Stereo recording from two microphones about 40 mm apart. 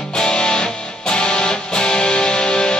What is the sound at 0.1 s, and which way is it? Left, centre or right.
Music, left.